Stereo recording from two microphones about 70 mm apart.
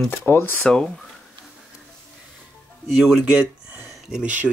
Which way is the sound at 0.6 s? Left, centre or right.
Centre.